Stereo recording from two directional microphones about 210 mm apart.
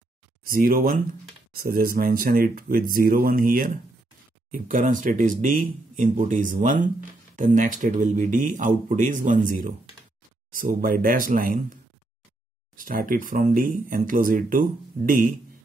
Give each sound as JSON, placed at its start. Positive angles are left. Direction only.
{"t": 0.4, "sound": "speech", "side_deg": -45}